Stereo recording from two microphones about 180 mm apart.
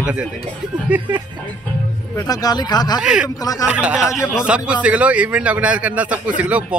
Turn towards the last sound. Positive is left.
turn(degrees=-5)  # may be behind; listen again after turning